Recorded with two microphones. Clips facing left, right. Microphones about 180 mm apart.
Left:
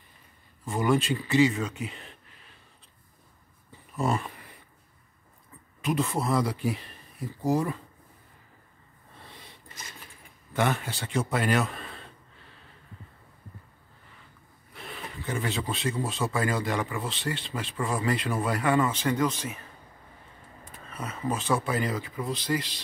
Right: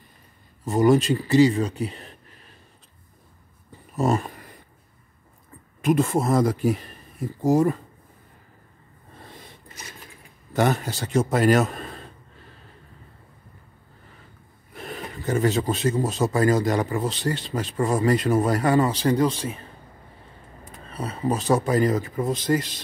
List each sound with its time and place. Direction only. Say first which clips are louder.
0.7 s speech: right 7 dB; 40° right (ahead or behind)
3.9 s dog: right 5 dB; 40° right (ahead or behind)
5.8 s speech: right 7 dB; 45° right (ahead or behind)
9.2 s a sound: right 5 dB; 45° right (ahead or behind)
10.5 s speech: right 5 dB; 40° right (ahead or behind)
14.7 s speech: right 6 dB; 45° right (ahead or behind)
20.9 s speech: right 6 dB; 35° right (ahead or behind)